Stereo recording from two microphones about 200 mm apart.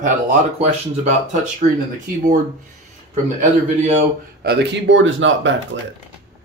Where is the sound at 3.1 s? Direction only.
35° right (ahead or behind).